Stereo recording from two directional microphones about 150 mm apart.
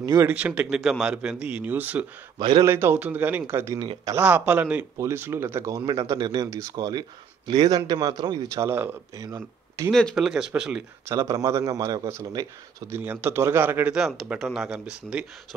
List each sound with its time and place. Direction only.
0.0 s speech: 20° right (ahead or behind)
0.3 s a man's voice: 10° right (ahead or behind)
2.3 s a man's voice: 30° right (ahead or behind)
2.6 s a man's voice: 15° right (ahead or behind)
3.8 s speech: 30° right (ahead or behind)
4.1 s a man's voice: 10° right (ahead or behind); by 8.6 s 25° right (ahead or behind)
8.6 s a man's voice: 15° right (ahead or behind)
9.8 s speech: centre (ahead or behind)
11.1 s a man's voice: 20° right (ahead or behind)